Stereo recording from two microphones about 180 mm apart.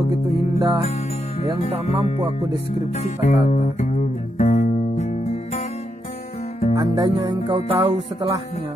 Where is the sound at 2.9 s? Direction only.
40° left (ahead or behind).